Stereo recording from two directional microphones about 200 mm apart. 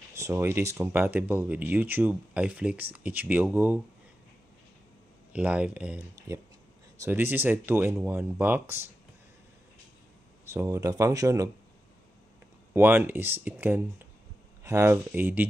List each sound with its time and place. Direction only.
0.1 s speech: 15° right (ahead or behind)
5.3 s speech: 5° right (ahead or behind)
10.4 s speech: 15° right (ahead or behind)
12.7 s speech: 10° right (ahead or behind)